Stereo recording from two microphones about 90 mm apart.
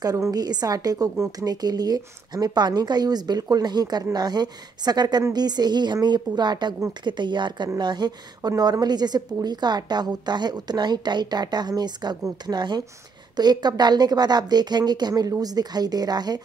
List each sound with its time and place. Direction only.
0.0 s a woman's voice: 40° right (ahead or behind)